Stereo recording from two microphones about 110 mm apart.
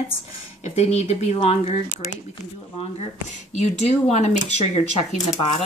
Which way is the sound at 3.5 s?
90° left.